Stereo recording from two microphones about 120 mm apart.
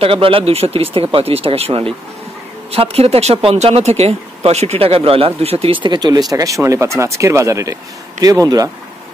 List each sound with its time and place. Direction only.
0.0 s speech: 50° right (ahead or behind)
6.3 s speech: 25° right (ahead or behind)